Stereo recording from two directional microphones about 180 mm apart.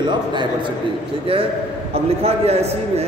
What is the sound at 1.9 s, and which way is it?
A man's voice, 35° right (ahead or behind).